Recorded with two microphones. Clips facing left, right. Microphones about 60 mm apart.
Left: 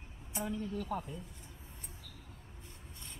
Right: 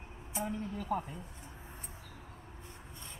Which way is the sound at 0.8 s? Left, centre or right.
Centre.